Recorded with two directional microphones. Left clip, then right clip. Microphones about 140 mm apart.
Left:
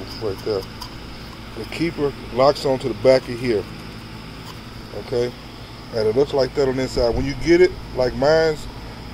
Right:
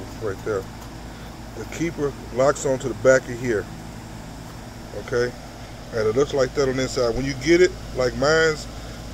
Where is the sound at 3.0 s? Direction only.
20° left (ahead or behind).